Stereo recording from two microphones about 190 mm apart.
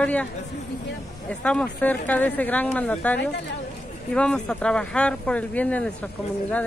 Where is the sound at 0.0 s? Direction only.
5° left (ahead or behind).